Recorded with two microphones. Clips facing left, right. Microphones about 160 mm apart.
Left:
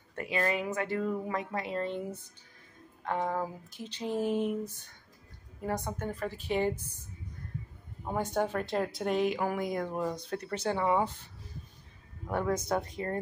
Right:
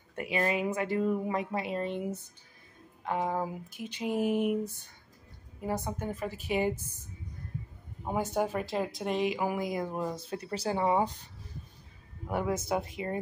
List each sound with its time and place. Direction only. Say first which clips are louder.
0.1 s speech: right 1 dB; 15° right (ahead or behind)
8.0 s speech: right 1 dB; 10° right (ahead or behind)
10.5 s speech: right 1 dB; 30° right (ahead or behind)
12.3 s speech: even; 10° right (ahead or behind)